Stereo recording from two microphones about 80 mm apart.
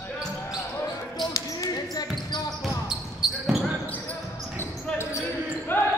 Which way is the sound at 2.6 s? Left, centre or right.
Centre.